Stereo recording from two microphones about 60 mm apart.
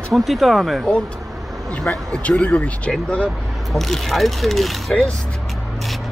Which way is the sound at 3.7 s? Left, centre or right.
Centre.